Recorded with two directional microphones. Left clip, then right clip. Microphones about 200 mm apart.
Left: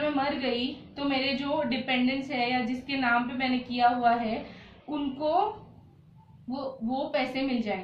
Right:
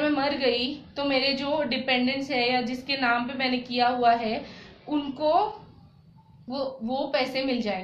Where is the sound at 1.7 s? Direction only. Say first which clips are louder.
Right 3 dB; 40° right (ahead or behind).